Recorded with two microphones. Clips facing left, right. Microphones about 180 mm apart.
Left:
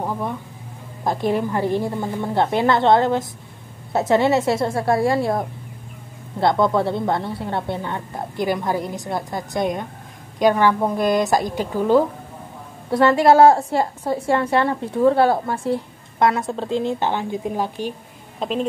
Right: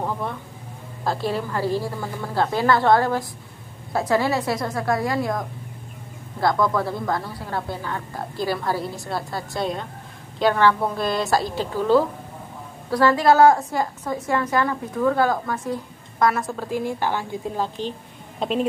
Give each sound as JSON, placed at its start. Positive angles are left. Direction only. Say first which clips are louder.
{"t": 0.0, "sound": "a sound", "louder": "left 2 dB", "side_deg": 15}
{"t": 1.0, "sound": "a woman's voice", "louder": "left 4 dB", "side_deg": 20}
{"t": 18.4, "sound": "speech", "louder": "even", "side_deg": 0}